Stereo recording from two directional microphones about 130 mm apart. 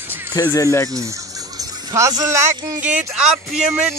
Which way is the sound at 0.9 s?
25° right (ahead or behind).